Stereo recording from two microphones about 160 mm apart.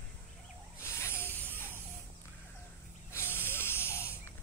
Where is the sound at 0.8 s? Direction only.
15° left (ahead or behind).